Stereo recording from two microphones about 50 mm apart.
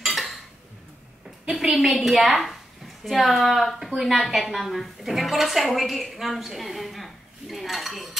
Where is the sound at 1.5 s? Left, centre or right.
Centre.